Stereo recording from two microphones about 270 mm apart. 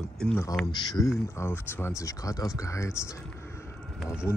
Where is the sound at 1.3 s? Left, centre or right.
Centre.